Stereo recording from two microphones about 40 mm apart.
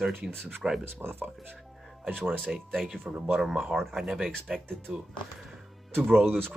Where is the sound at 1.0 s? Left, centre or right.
Right.